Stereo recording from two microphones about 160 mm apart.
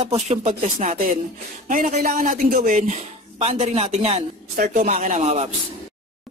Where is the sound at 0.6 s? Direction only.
55° right (ahead or behind); by 4.2 s 40° right (ahead or behind).